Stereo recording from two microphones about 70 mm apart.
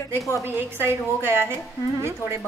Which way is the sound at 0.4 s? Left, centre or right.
Right.